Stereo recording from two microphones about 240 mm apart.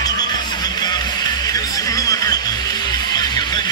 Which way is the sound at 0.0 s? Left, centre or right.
Centre.